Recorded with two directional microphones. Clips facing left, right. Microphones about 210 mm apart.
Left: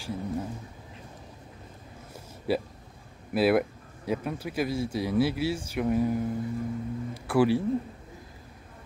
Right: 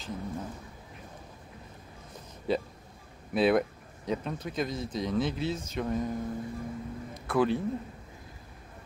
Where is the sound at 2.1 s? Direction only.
5° left (ahead or behind).